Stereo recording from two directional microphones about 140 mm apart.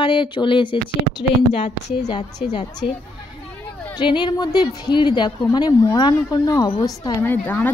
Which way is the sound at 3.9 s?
35° left (ahead or behind).